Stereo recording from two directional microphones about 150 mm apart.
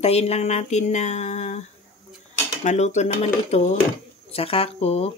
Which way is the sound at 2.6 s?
50° left (ahead or behind).